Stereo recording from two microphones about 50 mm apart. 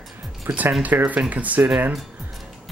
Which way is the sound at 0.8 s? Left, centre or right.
Right.